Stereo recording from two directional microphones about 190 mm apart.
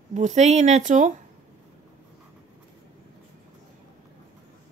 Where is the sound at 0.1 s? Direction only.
40° right (ahead or behind).